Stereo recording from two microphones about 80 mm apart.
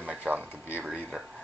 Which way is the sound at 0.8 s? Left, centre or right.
Centre.